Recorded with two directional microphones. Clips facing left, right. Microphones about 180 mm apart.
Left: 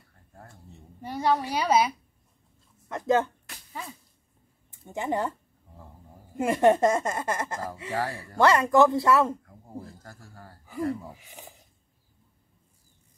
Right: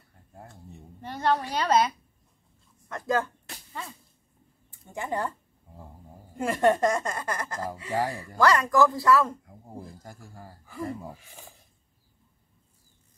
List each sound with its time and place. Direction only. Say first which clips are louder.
0.3 s a sound: right 3 dB; 15° right (ahead or behind)
1.0 s a woman's voice: left 1 dB; 10° left (ahead or behind)
2.9 s a woman's voice: left 3 dB; 25° left (ahead or behind)
4.9 s a woman's voice: left 2 dB; 20° left (ahead or behind)
6.3 s a woman's voice: left 2 dB; 20° left (ahead or behind)
7.9 s speech: right 2 dB; 15° right (ahead or behind)
8.4 s a woman's voice: left 2 dB; 25° left (ahead or behind)
9.4 s speech: left 1 dB; 15° right (ahead or behind)
11.1 s speech: left 2 dB; 15° left (ahead or behind)